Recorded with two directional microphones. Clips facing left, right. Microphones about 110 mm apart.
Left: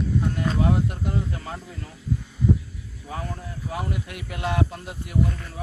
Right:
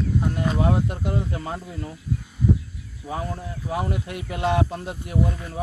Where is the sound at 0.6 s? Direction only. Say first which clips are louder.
Right 1 dB; 20° right (ahead or behind).